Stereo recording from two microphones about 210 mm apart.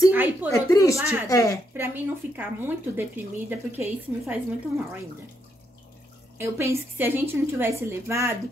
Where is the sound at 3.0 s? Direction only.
10° right (ahead or behind).